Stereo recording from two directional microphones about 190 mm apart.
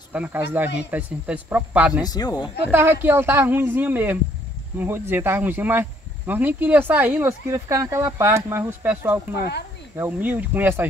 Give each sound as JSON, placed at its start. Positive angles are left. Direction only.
{"t": 0.1, "sound": "speech", "side_deg": -10}
{"t": 2.0, "sound": "speech", "side_deg": 20}
{"t": 2.7, "sound": "speech", "side_deg": -10}